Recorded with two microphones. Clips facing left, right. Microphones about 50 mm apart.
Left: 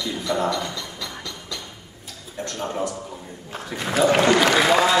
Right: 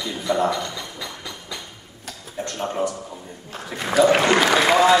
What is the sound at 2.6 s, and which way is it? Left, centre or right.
A man's voice, centre.